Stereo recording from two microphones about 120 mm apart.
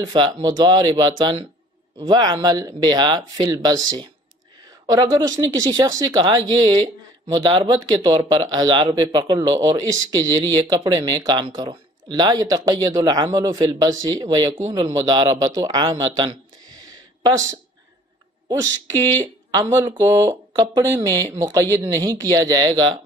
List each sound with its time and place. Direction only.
0.0 s speech: 35° right (ahead or behind)
16.7 s a sound: 30° right (ahead or behind)
19.5 s speech: 30° right (ahead or behind)